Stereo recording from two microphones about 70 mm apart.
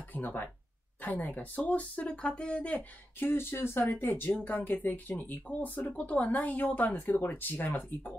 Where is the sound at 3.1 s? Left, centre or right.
Left.